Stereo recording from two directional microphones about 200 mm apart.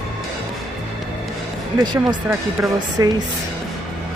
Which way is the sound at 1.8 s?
20° right (ahead or behind).